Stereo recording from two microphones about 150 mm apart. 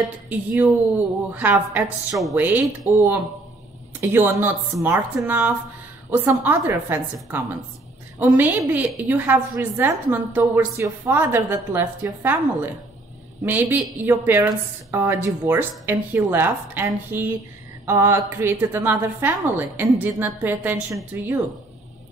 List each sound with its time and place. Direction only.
0.3 s a woman's voice: 10° right (ahead or behind)
13.5 s a woman's voice: 10° right (ahead or behind)